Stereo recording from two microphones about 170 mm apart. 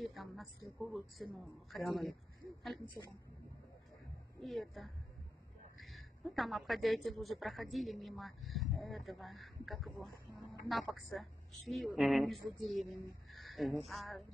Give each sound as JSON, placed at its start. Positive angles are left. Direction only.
{"t": 0.0, "sound": "a woman's voice", "side_deg": 0}
{"t": 4.4, "sound": "a woman's voice", "side_deg": 0}
{"t": 5.8, "sound": "a sound", "side_deg": 0}
{"t": 6.3, "sound": "a woman's voice", "side_deg": 0}